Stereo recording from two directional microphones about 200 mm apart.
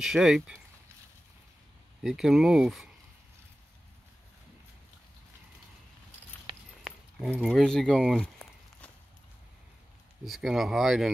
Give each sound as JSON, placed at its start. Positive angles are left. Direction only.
{"t": 0.0, "sound": "speech", "side_deg": -5}
{"t": 2.0, "sound": "speech", "side_deg": 0}
{"t": 6.8, "sound": "keys jangling", "side_deg": 0}
{"t": 10.2, "sound": "speech", "side_deg": 0}